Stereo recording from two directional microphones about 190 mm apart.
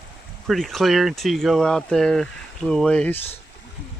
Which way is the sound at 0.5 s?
Centre (ahead or behind).